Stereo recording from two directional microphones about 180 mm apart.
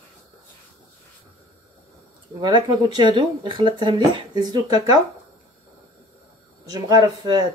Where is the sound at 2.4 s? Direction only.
25° right (ahead or behind).